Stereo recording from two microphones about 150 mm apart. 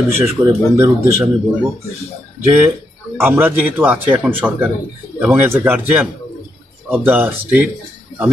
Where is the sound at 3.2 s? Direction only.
15° right (ahead or behind).